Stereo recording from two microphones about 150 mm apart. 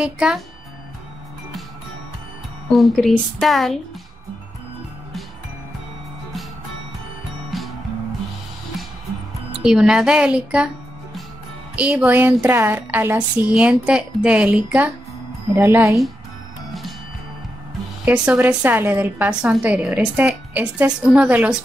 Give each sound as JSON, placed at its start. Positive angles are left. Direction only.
{"t": 0.0, "sound": "speech", "side_deg": -5}
{"t": 2.7, "sound": "speech", "side_deg": 0}
{"t": 7.5, "sound": "music", "side_deg": 0}
{"t": 9.6, "sound": "speech", "side_deg": -5}
{"t": 11.7, "sound": "a woman's voice", "side_deg": -10}
{"t": 18.0, "sound": "a woman's voice", "side_deg": -5}